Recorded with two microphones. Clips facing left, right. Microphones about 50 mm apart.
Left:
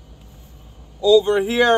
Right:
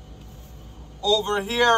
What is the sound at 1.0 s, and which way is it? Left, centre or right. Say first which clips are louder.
Speech: left 8 dB; centre.